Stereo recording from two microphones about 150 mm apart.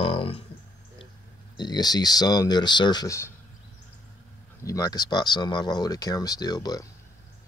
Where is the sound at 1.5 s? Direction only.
25° left (ahead or behind).